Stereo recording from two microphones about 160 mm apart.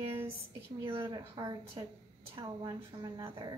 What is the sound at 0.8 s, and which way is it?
A woman's voice, 30° right (ahead or behind).